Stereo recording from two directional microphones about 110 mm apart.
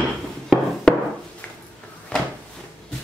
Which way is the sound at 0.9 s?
5° left (ahead or behind).